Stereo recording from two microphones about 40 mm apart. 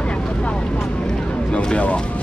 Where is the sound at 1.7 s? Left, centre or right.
Left.